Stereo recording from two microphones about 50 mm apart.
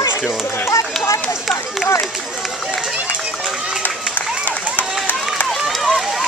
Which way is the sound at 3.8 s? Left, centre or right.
Left.